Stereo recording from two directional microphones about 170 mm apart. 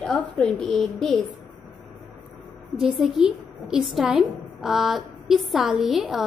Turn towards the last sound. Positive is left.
turn(degrees=0)  # may be behind; listen again after turning